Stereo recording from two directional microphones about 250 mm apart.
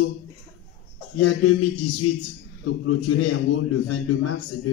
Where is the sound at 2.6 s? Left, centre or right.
Left.